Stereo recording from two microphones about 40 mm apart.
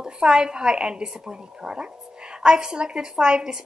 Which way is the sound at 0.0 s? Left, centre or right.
Centre.